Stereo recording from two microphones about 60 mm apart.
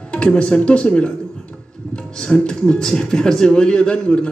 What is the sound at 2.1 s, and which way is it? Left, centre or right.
Speech, centre.